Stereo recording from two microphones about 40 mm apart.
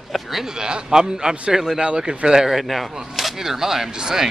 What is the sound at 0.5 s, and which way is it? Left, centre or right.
Speech, centre.